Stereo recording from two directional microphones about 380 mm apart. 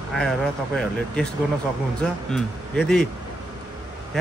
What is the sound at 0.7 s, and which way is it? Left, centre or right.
Speech, centre.